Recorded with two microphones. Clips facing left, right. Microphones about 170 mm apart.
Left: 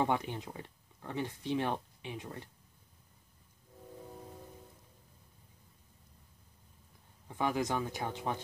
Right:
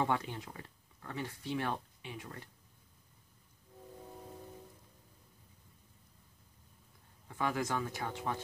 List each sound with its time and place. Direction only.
0.0 s speech: 20° left (ahead or behind)
7.2 s speech: 20° left (ahead or behind)